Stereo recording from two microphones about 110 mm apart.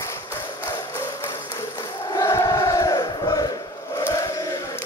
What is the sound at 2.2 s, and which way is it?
Crowd, 30° left (ahead or behind).